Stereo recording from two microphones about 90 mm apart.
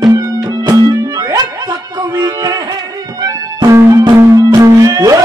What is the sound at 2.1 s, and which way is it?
Music, 45° right (ahead or behind).